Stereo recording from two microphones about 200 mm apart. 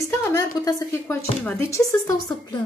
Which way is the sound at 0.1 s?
15° left (ahead or behind).